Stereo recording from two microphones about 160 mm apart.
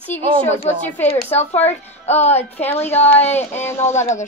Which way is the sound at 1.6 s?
40° left (ahead or behind).